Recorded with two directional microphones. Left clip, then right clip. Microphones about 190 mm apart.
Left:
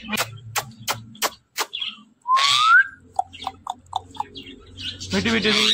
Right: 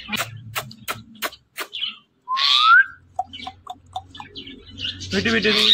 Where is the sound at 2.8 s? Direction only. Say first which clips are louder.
Right 1 dB; 20° left (ahead or behind).